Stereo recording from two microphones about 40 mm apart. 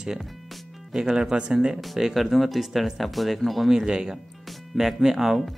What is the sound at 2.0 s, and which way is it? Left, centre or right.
Speech, centre.